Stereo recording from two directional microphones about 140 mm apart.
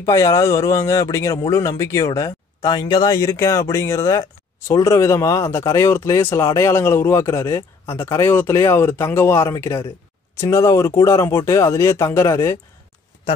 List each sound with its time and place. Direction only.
0.0 s speech: 25° left (ahead or behind)